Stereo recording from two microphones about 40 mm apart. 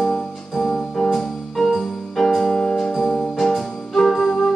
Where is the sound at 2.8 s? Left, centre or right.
Centre.